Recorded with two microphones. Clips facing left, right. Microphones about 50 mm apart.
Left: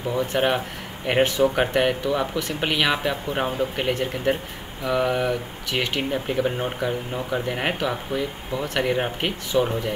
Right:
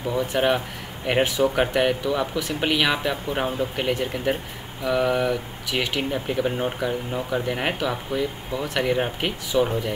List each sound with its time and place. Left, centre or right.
0.3 s speech: centre